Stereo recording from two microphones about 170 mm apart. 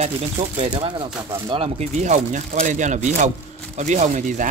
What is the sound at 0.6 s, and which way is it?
Speech, 30° right (ahead or behind).